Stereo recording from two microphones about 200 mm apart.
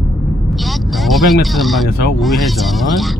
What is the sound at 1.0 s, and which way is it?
Speech, centre (ahead or behind).